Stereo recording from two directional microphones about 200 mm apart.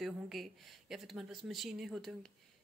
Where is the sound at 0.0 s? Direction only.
Centre (ahead or behind).